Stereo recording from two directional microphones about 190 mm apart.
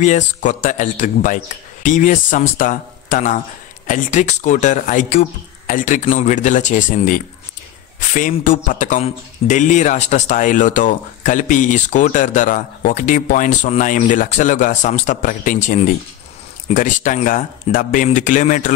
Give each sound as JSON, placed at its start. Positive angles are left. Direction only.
{"t": 0.0, "sound": "speech", "side_deg": 40}